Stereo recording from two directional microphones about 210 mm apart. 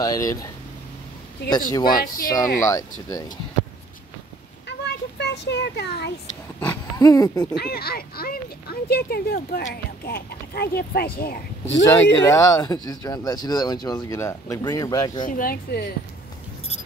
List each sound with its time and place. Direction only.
0.0 s speech: 15° left (ahead or behind)
1.7 s speech: 20° left (ahead or behind)
4.6 s a sound: 55° left (ahead or behind)
6.6 s speech: 10° left (ahead or behind)
7.5 s speech: 50° left (ahead or behind)
11.8 s speech: 15° left (ahead or behind)
15.2 s speech: 40° left (ahead or behind)